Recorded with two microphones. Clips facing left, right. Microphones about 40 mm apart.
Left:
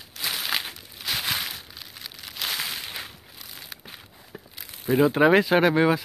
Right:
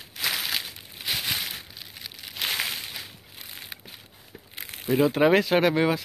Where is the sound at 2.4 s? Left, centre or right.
Right.